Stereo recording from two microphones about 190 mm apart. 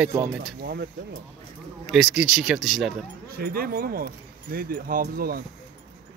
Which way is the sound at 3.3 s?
50° right (ahead or behind).